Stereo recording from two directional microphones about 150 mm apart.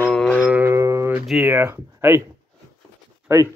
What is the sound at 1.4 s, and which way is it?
Speech, 15° right (ahead or behind).